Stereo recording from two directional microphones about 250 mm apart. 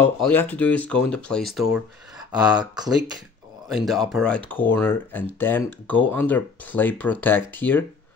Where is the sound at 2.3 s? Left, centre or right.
Centre.